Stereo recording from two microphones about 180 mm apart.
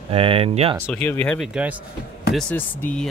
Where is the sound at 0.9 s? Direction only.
5° left (ahead or behind).